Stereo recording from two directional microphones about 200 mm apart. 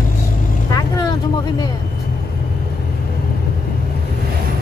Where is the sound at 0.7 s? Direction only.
20° left (ahead or behind).